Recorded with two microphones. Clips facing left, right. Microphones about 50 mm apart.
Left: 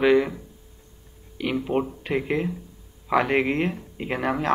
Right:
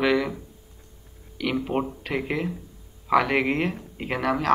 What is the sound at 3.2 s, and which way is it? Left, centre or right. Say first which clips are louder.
Speech: left 2 dB; centre.